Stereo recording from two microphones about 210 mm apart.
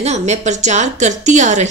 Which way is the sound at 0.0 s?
30° right (ahead or behind).